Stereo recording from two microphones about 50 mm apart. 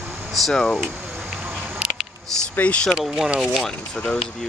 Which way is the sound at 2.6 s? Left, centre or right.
Left.